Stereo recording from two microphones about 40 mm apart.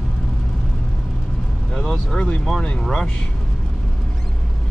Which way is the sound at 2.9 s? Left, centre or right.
Left.